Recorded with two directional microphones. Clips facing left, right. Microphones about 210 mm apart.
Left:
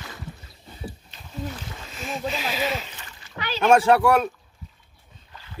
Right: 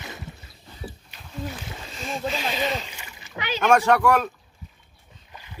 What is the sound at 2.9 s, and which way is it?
Splash, 10° right (ahead or behind).